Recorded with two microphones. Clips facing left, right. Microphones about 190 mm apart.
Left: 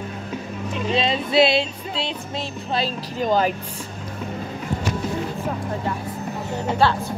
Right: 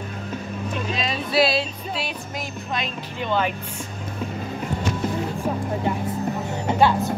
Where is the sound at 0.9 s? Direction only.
25° left (ahead or behind).